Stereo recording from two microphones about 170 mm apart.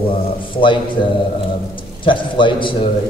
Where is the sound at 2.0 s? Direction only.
30° left (ahead or behind).